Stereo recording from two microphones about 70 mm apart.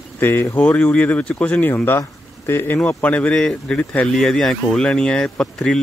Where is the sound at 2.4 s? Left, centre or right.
Left.